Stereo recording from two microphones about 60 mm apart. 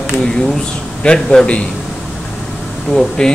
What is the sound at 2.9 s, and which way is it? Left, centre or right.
Speech, centre.